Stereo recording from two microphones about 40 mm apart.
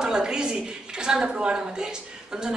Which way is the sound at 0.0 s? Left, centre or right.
Centre.